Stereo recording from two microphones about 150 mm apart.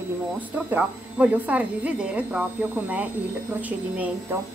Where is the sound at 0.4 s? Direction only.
10° right (ahead or behind).